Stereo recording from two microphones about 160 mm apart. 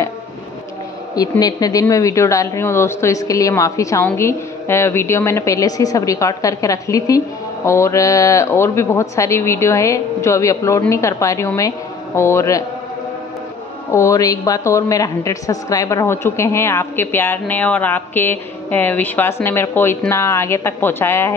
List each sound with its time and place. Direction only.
1.4 s a woman's voice: 25° left (ahead or behind)
13.9 s a woman's voice: 20° left (ahead or behind)